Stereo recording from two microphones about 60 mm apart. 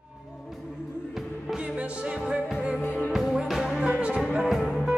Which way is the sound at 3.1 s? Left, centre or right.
Centre.